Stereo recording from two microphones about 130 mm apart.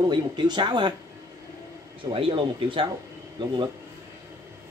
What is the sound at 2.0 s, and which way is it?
Speech, 45° right (ahead or behind).